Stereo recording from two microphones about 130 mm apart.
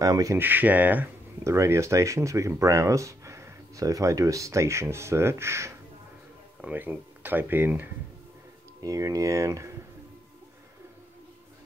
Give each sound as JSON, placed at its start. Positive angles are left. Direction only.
{"t": 0.0, "sound": "speech", "side_deg": -25}
{"t": 0.4, "sound": "speech", "side_deg": -15}
{"t": 8.8, "sound": "speech", "side_deg": -25}